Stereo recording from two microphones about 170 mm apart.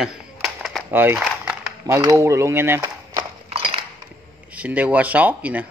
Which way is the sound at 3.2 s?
30° right (ahead or behind).